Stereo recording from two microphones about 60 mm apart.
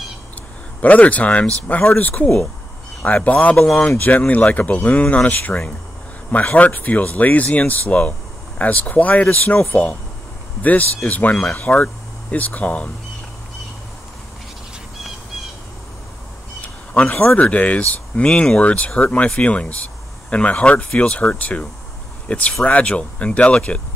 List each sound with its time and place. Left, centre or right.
0.7 s speech: left
10.6 s speech: left
16.6 s a sound: left
17.4 s speech: left